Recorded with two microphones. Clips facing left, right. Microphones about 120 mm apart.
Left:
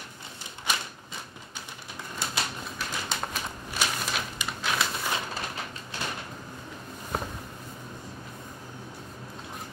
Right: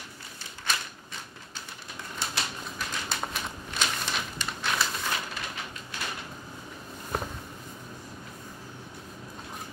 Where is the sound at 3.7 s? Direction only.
10° left (ahead or behind).